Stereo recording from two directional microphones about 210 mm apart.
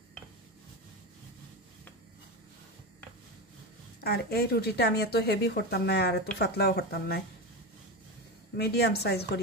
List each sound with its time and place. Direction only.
4.0 s speech: 50° left (ahead or behind)
8.5 s speech: 50° left (ahead or behind)